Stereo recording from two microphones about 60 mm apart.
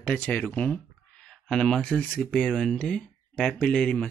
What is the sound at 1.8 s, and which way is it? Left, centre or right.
Speech, left.